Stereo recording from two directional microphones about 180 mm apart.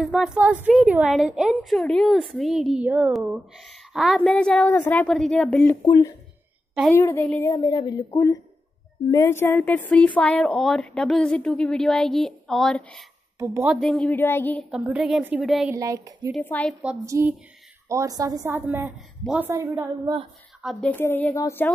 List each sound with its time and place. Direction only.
0.0 s a woman's voice: 5° right (ahead or behind)
6.9 s a woman's voice: 15° left (ahead or behind)
7.5 s a woman's voice: 20° left (ahead or behind); by 13.0 s centre (ahead or behind)
13.4 s a woman's voice: 15° right (ahead or behind)
13.7 s a woman's voice: centre (ahead or behind)
14.7 s a woman's voice: 5° right (ahead or behind)
15.7 s a woman's voice: 20° right (ahead or behind)
16.3 s a woman's voice: 10° left (ahead or behind)
17.0 s a woman's voice: 15° right (ahead or behind)
20.6 s a woman's voice: 10° left (ahead or behind)